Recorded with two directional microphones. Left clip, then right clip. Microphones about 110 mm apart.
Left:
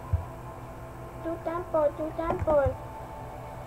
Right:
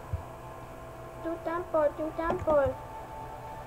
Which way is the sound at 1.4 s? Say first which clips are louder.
Left 1 dB; centre (ahead or behind).